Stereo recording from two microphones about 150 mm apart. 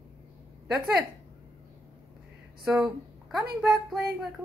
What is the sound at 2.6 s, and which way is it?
Speech, centre (ahead or behind).